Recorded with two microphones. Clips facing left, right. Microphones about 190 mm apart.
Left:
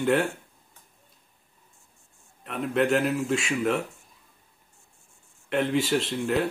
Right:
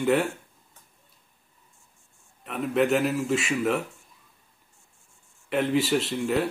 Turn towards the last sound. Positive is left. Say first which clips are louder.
# even
turn(degrees=0)  # may be behind; listen again after turning